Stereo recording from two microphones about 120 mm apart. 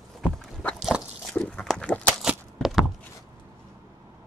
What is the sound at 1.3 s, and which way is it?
Dog, 5° left (ahead or behind).